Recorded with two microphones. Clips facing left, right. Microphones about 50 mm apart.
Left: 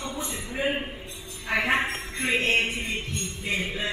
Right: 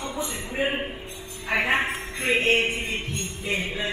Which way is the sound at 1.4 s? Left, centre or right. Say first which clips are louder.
Right 1 dB; centre.